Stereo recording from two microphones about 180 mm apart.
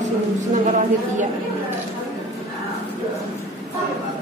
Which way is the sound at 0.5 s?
40° right (ahead or behind).